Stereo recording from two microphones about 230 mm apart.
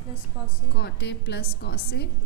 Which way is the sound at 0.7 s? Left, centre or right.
Left.